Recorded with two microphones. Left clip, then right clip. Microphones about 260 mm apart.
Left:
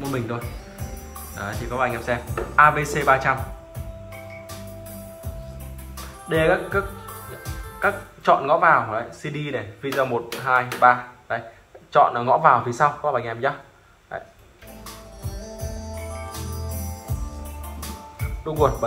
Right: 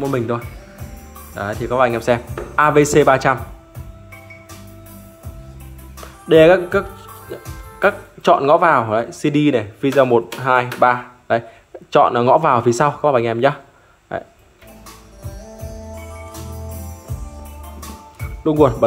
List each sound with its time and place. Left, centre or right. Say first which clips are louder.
1.3 s speech: right 9 dB; centre
6.2 s speech: right 10 dB; right
7.8 s speech: right 5 dB; right
18.5 s speech: right 7 dB; right